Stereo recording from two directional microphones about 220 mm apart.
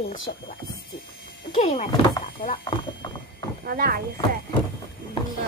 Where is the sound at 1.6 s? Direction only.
25° left (ahead or behind).